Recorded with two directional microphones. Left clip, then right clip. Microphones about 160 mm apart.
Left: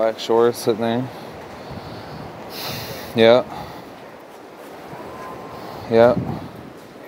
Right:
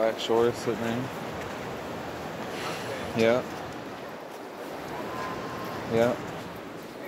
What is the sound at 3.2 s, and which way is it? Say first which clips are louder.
Speech: left 11 dB; 30° left (ahead or behind).